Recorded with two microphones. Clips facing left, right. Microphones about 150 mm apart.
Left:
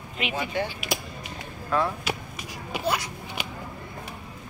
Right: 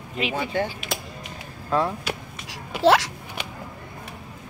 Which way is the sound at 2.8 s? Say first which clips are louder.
Right 11 dB; 90° right.